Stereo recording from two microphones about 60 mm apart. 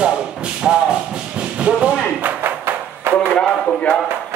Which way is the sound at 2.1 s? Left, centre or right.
Right.